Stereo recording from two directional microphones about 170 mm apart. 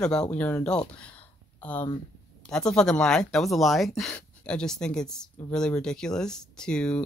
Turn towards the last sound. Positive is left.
turn(degrees=5)  # may be behind; listen again after turning